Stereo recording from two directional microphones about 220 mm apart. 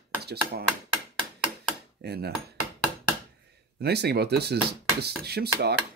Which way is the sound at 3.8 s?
45° right (ahead or behind).